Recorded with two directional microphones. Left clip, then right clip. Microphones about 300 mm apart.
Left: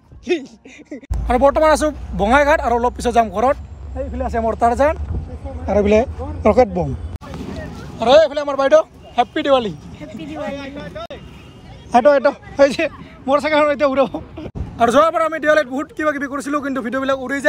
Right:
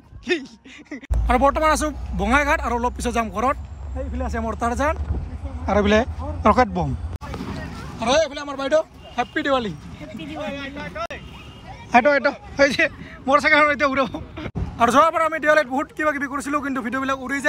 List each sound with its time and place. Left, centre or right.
0.3 s speech: right
0.9 s speech: centre
8.0 s a man's voice: centre
9.1 s speech: centre
11.9 s a man's voice: centre